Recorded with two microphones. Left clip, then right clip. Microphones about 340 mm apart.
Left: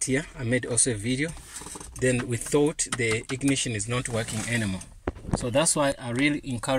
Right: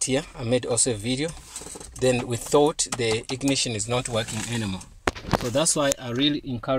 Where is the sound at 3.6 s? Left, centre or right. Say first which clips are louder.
Right 4 dB; right.